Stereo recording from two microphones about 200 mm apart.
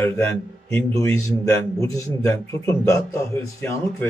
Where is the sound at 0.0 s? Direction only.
10° left (ahead or behind).